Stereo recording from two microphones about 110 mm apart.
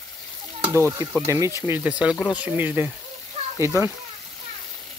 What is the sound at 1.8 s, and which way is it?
Speech, 10° right (ahead or behind).